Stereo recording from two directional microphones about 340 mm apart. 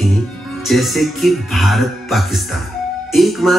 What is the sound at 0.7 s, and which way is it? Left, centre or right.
Speech, centre.